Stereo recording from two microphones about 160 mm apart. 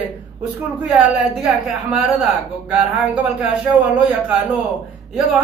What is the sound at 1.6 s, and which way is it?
A man's voice, centre (ahead or behind).